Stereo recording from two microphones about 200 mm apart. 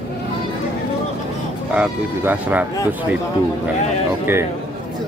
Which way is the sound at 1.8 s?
10° right (ahead or behind).